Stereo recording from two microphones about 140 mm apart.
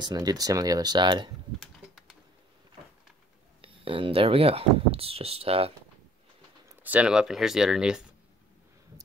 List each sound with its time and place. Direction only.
0.0 s speech: 30° right (ahead or behind)
1.6 s typing: 5° right (ahead or behind)
3.6 s speech: 40° right (ahead or behind)
6.8 s speech: 10° right (ahead or behind)